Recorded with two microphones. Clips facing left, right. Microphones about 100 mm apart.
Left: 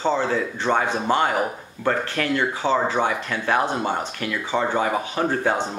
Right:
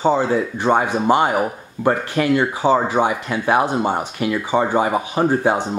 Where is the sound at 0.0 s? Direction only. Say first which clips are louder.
Right 5 dB; 15° right (ahead or behind).